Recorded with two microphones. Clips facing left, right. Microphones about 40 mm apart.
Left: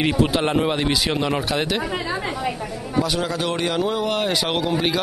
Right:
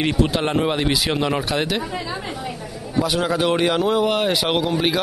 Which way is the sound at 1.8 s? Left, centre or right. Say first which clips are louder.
Left 2 dB; left.